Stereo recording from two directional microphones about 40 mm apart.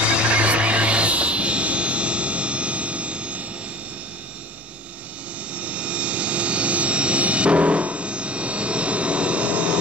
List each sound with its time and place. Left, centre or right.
0.0 s music: right
5.5 s aircraft: right